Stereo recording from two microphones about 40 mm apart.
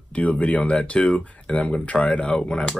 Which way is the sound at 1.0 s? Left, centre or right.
Left.